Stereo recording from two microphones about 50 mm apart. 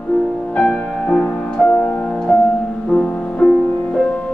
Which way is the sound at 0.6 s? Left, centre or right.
Left.